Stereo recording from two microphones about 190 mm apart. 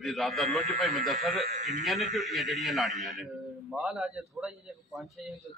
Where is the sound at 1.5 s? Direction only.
40° right (ahead or behind).